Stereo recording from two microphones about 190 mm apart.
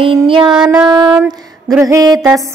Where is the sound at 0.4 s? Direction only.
5° right (ahead or behind).